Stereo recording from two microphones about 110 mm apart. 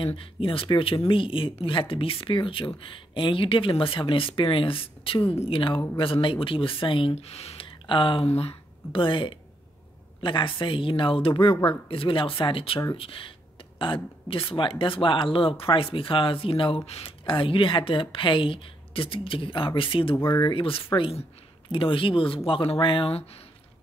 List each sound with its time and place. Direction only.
0.0 s speech: 55° left (ahead or behind)
20.2 s speech: 35° left (ahead or behind)
20.5 s speech: 55° left (ahead or behind)